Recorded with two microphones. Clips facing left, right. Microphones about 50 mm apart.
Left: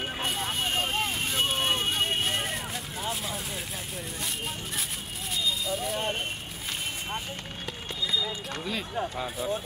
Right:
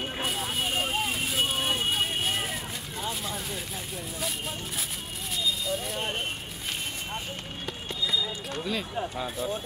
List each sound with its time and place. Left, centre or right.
0.2 s vehicle: centre
5.3 s a sound: centre
8.6 s speech: centre